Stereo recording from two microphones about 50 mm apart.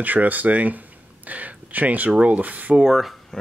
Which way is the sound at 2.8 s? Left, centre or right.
Centre.